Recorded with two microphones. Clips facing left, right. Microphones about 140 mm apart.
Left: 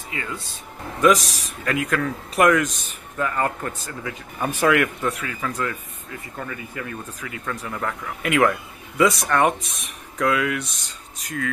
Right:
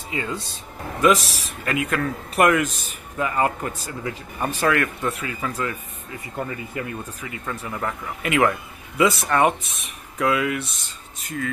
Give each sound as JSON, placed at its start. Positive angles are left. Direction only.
{"t": 0.1, "sound": "speech", "side_deg": -25}
{"t": 1.0, "sound": "speech", "side_deg": 0}
{"t": 4.5, "sound": "speech", "side_deg": 15}
{"t": 5.0, "sound": "speech", "side_deg": -5}
{"t": 6.3, "sound": "speech", "side_deg": -25}
{"t": 7.2, "sound": "speech", "side_deg": -5}